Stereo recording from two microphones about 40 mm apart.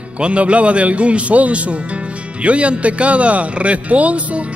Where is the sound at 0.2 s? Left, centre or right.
Right.